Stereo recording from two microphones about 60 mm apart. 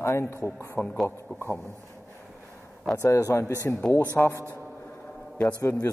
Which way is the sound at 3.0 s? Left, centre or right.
Left.